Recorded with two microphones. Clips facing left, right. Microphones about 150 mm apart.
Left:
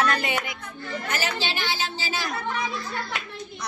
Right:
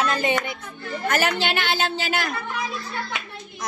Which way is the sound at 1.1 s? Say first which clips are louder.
Right 7 dB; 60° right (ahead or behind).